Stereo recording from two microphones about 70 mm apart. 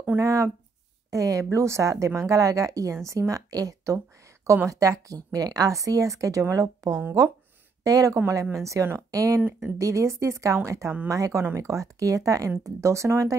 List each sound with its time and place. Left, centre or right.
0.2 s a woman's voice: right
8.5 s a woman's voice: right